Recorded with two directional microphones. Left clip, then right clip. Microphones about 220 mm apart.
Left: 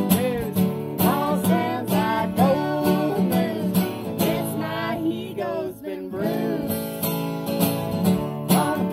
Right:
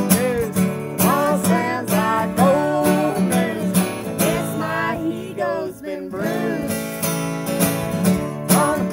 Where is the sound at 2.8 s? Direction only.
20° right (ahead or behind).